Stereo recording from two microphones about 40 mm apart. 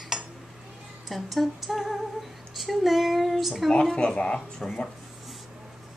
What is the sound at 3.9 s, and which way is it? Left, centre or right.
Speech, left.